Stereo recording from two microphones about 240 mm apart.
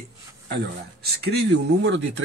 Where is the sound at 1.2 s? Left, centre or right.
Right.